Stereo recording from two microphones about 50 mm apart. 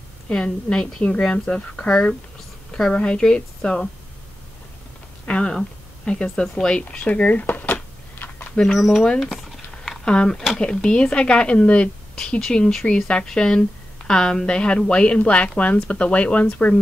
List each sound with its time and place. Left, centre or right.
0.3 s a woman's voice: centre
5.2 s a woman's voice: left
7.7 s a sound: left
8.7 s speech: centre
9.2 s a sound: centre
10.0 s speech: centre
10.3 s speech: centre
10.6 s a woman's voice: centre
12.2 s a woman's voice: centre